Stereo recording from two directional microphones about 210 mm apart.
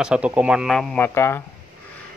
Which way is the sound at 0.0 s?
5° right (ahead or behind).